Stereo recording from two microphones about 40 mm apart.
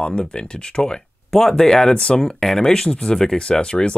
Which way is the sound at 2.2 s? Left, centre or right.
Centre.